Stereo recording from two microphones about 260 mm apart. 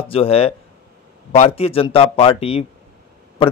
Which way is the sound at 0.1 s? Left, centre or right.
Left.